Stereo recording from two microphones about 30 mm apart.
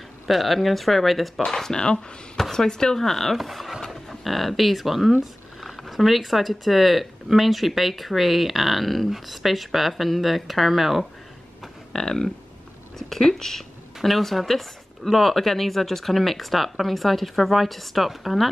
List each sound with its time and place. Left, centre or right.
0.3 s speech: centre
1.4 s speech: left
3.3 s speech: centre
5.2 s a sound: centre
5.8 s speech: centre
11.9 s speech: centre